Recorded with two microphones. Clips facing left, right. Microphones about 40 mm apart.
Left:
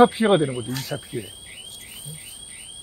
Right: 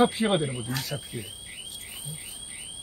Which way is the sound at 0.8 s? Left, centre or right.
Centre.